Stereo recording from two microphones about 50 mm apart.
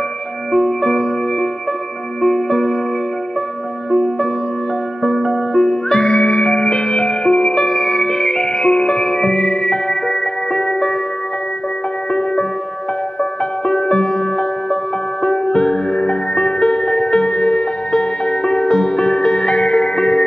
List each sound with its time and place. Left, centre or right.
0.5 s music: centre
5.0 s music: centre
5.7 s music: centre
12.1 s music: centre